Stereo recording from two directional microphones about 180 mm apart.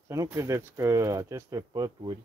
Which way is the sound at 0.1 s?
15° right (ahead or behind).